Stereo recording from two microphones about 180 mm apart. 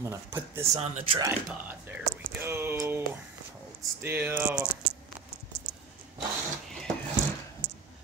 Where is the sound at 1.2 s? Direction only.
10° right (ahead or behind).